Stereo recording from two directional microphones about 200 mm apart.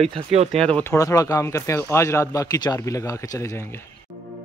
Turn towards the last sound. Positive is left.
turn(degrees=15)  # may be behind; listen again after turning